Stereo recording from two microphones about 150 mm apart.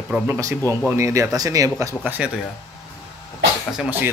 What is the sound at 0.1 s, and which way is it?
A man's voice, 10° right (ahead or behind).